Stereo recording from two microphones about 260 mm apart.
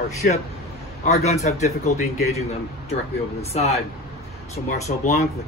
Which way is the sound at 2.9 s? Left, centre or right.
Left.